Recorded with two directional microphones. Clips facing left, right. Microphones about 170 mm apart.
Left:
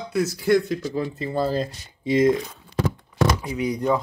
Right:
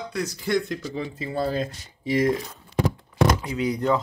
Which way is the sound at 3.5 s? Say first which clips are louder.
Left 1 dB; 15° left (ahead or behind).